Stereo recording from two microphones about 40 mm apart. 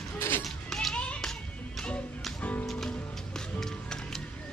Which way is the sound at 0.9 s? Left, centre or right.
Left.